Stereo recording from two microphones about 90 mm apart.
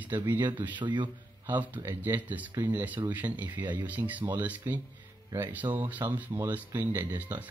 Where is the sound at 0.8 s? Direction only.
60° right (ahead or behind).